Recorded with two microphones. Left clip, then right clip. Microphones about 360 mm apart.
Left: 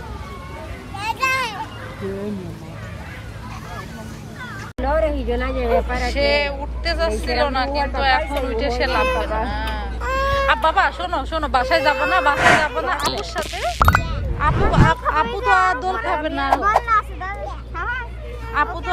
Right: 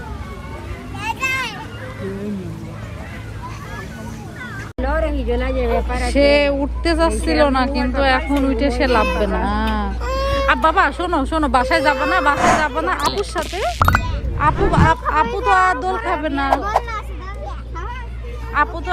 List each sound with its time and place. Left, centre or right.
0.9 s children playing: centre
4.8 s a sound: left
5.9 s speech: centre
10.0 s speech: centre
18.6 s speech: centre